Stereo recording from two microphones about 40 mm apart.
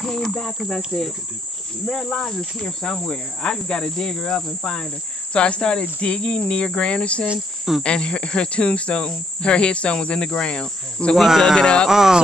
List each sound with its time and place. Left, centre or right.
0.0 s speech: centre
1.9 s cricket: centre
11.1 s speech: centre
11.5 s cricket: left
11.9 s music: centre